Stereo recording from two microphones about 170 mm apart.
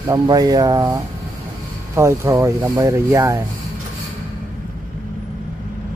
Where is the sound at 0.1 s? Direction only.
20° right (ahead or behind).